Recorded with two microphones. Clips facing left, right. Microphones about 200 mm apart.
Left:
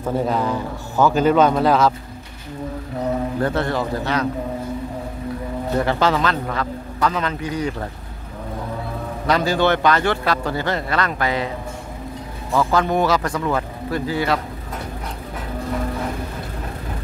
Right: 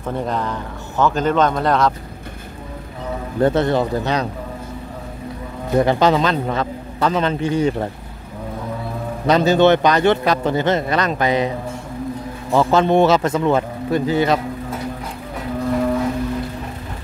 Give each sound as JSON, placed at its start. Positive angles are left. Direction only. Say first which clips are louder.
{"t": 0.0, "sound": "speech", "louder": "left 2 dB", "side_deg": 5}
{"t": 3.3, "sound": "speech", "louder": "right 5 dB", "side_deg": -20}
{"t": 5.8, "sound": "speech", "louder": "right 5 dB", "side_deg": -20}
{"t": 9.3, "sound": "speech", "louder": "right 5 dB", "side_deg": -20}
{"t": 12.5, "sound": "speech", "louder": "right 4 dB", "side_deg": -25}